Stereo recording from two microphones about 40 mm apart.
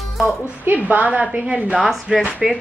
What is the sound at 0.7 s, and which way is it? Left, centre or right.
A woman's voice, right.